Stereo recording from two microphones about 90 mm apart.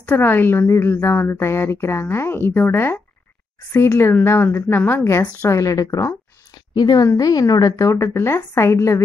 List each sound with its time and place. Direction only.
0.0 s a woman's voice: 20° left (ahead or behind); by 6.1 s 40° left (ahead or behind)
6.7 s a woman's voice: 50° left (ahead or behind); by 9.0 s 30° left (ahead or behind)